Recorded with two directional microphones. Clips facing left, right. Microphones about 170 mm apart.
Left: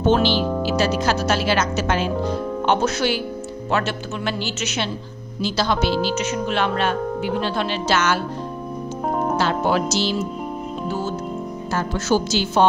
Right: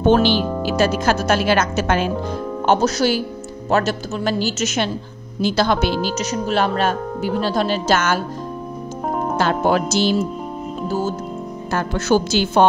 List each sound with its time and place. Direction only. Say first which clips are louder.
0.0 s speech: right 3 dB; 50° right (ahead or behind)
2.6 s speech: right 4 dB; 40° right (ahead or behind)
5.4 s speech: right 3 dB; 55° right (ahead or behind)
6.0 s speech: right 1 dB; 40° right (ahead or behind)
9.1 s music: left 1 dB; centre (ahead or behind)
9.4 s speech: right 5 dB; 50° right (ahead or behind)
11.7 s a woman's voice: right 3 dB; 60° right (ahead or behind)